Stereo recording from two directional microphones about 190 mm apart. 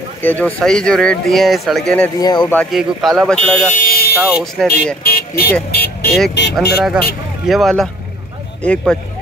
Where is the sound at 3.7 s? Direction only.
50° left (ahead or behind).